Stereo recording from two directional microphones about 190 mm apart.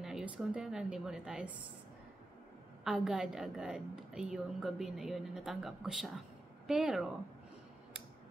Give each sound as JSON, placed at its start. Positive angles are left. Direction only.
{"t": 0.0, "sound": "a woman's voice", "side_deg": -5}
{"t": 2.8, "sound": "a woman's voice", "side_deg": -5}